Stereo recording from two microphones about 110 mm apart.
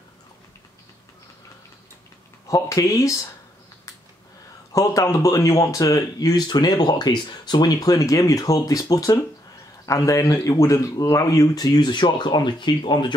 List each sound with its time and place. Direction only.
2.4 s speech: 30° left (ahead or behind)
4.7 s speech: 30° left (ahead or behind); by 13.0 s 45° left (ahead or behind)